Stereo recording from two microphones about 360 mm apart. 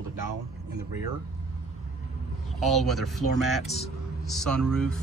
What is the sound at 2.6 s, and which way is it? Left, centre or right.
Speech, centre.